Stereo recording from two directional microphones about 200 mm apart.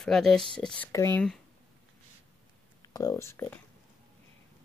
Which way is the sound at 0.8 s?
15° left (ahead or behind).